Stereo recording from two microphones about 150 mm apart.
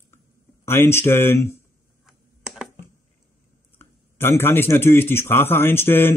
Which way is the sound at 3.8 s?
15° left (ahead or behind).